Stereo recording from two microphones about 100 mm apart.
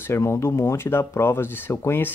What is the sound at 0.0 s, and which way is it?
Speech, 25° left (ahead or behind).